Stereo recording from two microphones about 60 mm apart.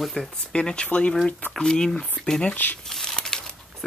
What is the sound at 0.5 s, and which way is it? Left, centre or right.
Speech, centre.